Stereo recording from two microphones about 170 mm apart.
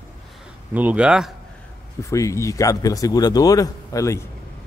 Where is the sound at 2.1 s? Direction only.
20° left (ahead or behind).